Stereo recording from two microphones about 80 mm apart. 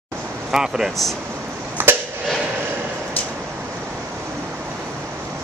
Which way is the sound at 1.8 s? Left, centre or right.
Right.